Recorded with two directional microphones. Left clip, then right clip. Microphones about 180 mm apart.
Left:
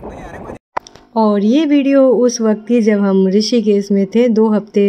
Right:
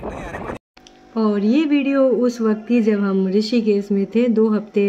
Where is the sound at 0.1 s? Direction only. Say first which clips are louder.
Right 1 dB; 45° left (ahead or behind).